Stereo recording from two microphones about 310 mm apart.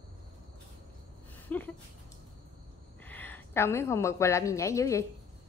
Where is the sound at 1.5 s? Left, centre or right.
Centre.